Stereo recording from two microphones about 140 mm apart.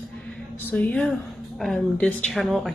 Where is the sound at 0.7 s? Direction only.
10° left (ahead or behind).